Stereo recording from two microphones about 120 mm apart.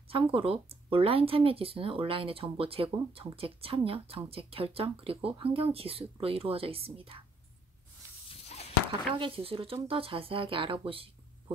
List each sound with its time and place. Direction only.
0.1 s speech: 50° right (ahead or behind)
8.3 s a sound: 65° left (ahead or behind)
9.1 s speech: 45° right (ahead or behind)